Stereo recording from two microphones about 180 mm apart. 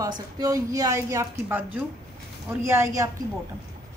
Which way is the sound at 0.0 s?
20° right (ahead or behind).